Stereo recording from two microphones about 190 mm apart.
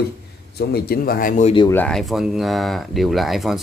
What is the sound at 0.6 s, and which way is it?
Speech, 55° left (ahead or behind).